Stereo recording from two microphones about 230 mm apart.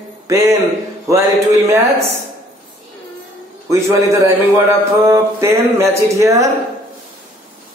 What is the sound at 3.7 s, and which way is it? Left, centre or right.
A man's voice, centre.